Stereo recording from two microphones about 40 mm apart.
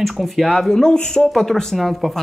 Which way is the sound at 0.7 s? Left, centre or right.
Centre.